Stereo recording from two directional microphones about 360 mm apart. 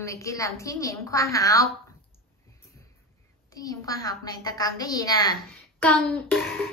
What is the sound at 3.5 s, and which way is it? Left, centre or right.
Child singing, centre.